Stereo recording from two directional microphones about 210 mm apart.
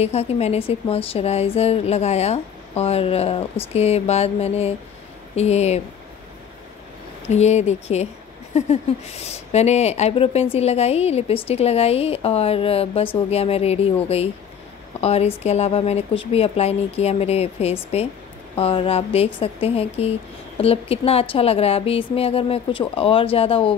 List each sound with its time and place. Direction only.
0.0 s speech: 30° left (ahead or behind)
7.2 s speech: 30° left (ahead or behind)